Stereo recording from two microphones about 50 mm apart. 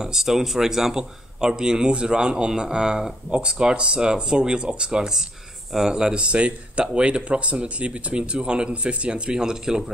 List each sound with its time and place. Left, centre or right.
0.0 s a man's voice: centre